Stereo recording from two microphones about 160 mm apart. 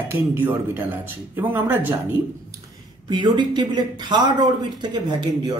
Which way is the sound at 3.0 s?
30° right (ahead or behind).